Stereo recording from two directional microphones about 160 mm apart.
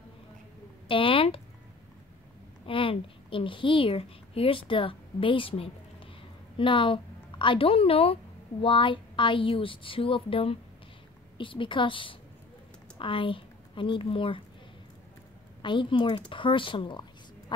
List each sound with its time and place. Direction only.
0.8 s a sound: 35° left (ahead or behind)
2.6 s a woman's voice: 35° left (ahead or behind)
15.6 s a woman's voice: 30° left (ahead or behind)